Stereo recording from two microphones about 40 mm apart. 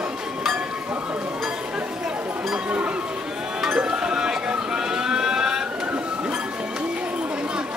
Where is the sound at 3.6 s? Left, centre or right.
Centre.